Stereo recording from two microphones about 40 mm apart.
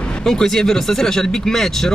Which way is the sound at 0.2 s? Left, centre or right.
Centre.